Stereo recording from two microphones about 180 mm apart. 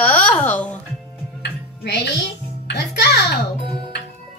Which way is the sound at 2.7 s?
65° left (ahead or behind).